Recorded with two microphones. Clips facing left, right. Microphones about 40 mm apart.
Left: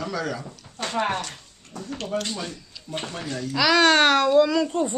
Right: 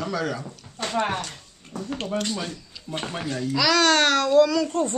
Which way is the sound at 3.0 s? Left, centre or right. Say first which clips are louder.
Right 5 dB; right.